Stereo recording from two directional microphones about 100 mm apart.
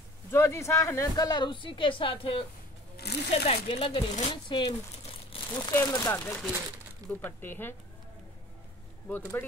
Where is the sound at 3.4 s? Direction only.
80° left; by 4.7 s 50° left (ahead or behind).